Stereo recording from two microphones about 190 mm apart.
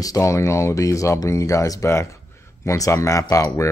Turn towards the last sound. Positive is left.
turn(degrees=15)  # may be behind; listen again after turning